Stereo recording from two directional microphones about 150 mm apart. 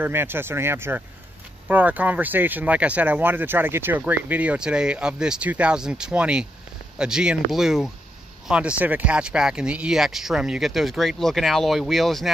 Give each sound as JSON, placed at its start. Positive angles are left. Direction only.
{"t": 0.0, "sound": "speech", "side_deg": -15}